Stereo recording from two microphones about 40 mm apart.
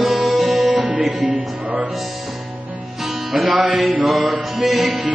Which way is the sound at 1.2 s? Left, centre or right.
Right.